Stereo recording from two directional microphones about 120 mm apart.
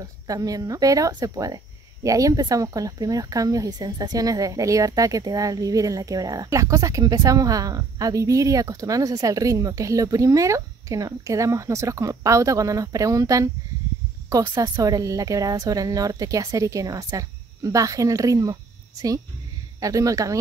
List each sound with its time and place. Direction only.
0.0 s speech: 30° right (ahead or behind)